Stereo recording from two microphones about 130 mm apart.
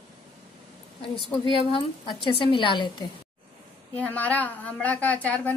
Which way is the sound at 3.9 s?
10° left (ahead or behind).